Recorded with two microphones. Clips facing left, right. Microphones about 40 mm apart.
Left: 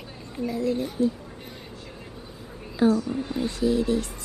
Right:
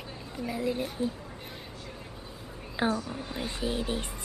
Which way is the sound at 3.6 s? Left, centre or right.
Right.